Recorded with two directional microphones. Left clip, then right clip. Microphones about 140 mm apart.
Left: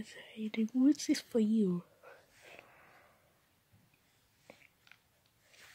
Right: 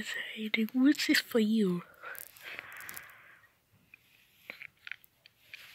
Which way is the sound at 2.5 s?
10° left (ahead or behind).